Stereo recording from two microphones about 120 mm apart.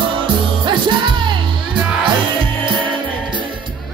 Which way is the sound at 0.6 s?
40° right (ahead or behind).